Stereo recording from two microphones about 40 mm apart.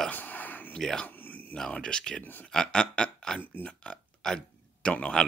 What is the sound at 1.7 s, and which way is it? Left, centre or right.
Speech, left.